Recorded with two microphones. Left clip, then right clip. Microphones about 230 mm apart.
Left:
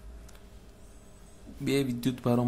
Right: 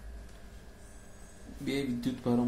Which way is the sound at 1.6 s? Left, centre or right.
Left.